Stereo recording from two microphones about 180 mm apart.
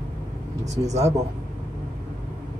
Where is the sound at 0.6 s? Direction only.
40° right (ahead or behind).